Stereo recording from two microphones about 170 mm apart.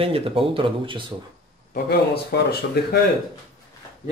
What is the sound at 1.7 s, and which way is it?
Speech, 70° left (ahead or behind).